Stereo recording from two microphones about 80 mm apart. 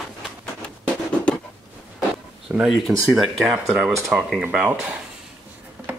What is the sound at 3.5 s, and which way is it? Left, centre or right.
Speech, centre.